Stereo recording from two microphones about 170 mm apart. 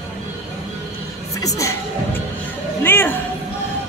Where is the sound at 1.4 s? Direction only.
20° left (ahead or behind).